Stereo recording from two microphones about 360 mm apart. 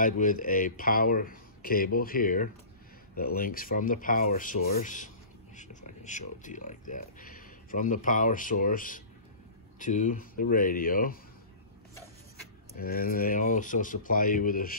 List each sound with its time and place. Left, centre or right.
0.0 s speech: left
12.7 s speech: left